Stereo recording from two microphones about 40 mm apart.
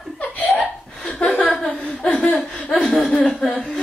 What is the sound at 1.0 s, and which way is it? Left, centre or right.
Chuckle, left.